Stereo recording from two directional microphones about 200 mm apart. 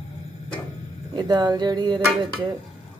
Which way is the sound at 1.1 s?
20° right (ahead or behind).